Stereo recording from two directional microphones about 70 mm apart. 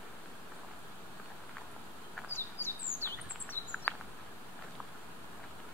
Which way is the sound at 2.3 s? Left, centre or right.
Left.